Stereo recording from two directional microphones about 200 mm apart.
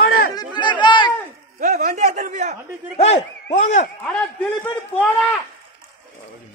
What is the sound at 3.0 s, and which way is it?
Speech, 30° left (ahead or behind).